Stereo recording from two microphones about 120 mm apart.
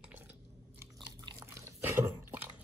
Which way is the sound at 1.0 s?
35° right (ahead or behind).